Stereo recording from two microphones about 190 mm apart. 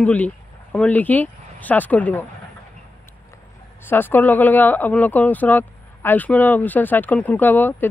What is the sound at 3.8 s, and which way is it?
Speech, 10° left (ahead or behind).